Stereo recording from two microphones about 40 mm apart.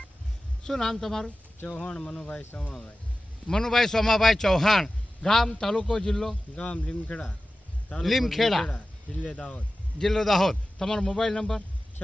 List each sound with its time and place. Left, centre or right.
0.7 s a man's voice: centre
1.7 s a man's voice: left
6.5 s speech: left
8.0 s speech: centre
8.6 s speech: left
9.9 s a man's voice: centre